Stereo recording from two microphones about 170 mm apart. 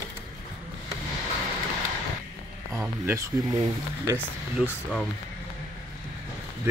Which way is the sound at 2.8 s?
15° right (ahead or behind).